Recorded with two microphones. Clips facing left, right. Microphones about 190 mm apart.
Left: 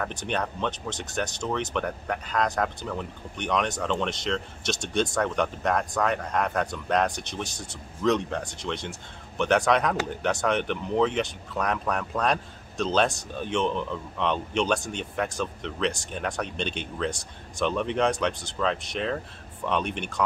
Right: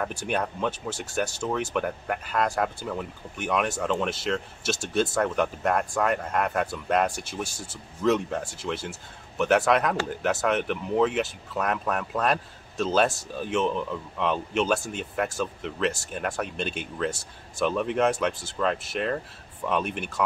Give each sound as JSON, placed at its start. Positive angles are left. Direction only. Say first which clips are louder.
{"t": 0.0, "sound": "speech", "louder": "right 1 dB", "side_deg": -10}